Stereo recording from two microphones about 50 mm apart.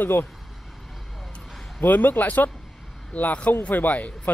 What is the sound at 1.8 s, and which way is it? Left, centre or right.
Speech, left.